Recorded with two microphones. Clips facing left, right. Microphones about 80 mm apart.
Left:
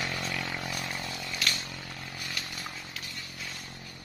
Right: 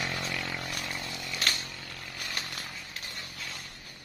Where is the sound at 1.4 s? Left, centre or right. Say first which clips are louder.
Right 1 dB; right.